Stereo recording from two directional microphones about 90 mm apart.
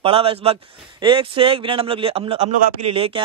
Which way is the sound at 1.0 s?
75° right (ahead or behind).